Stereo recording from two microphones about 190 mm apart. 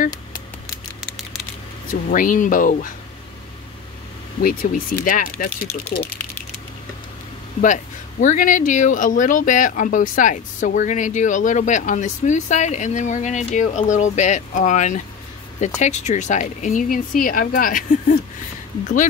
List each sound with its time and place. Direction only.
1.9 s speech: 45° left (ahead or behind)
4.4 s speech: 45° left (ahead or behind)
7.6 s speech: 40° left (ahead or behind)